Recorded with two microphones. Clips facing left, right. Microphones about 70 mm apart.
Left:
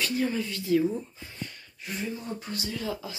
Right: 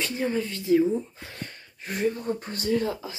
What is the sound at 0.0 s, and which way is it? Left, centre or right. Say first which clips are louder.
Speech: right 1 dB; right.